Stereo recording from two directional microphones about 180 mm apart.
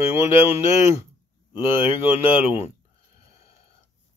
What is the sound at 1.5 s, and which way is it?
Speech, 25° left (ahead or behind).